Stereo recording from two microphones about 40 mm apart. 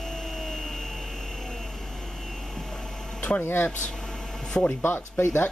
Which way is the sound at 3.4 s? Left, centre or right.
Left.